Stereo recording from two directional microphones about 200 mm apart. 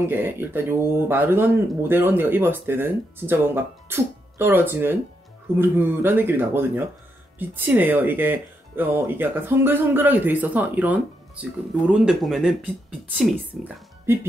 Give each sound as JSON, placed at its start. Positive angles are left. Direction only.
{"t": 0.1, "sound": "speech", "side_deg": -10}
{"t": 14.1, "sound": "speech", "side_deg": -10}